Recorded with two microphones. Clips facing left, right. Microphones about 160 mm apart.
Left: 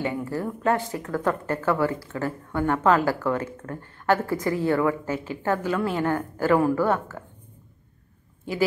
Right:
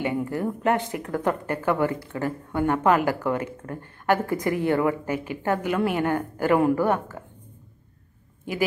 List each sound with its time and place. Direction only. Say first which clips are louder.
0.0 s speech: right 2 dB; 20° right (ahead or behind)